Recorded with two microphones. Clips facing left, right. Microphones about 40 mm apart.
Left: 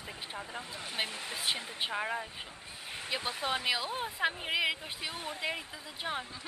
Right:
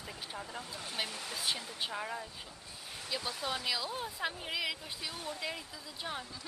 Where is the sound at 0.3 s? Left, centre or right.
Left.